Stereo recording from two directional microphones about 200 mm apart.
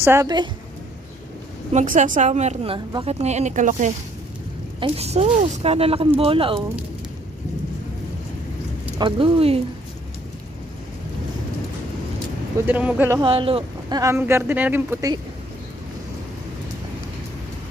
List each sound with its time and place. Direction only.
0.0 s speech: 15° right (ahead or behind)
1.7 s a woman's voice: 35° right (ahead or behind)
8.9 s speech: 25° right (ahead or behind)
12.6 s speech: 5° right (ahead or behind)
13.2 s speech: 25° right (ahead or behind)